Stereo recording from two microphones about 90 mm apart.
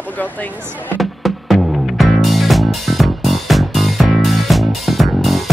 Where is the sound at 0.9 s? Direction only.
Centre (ahead or behind).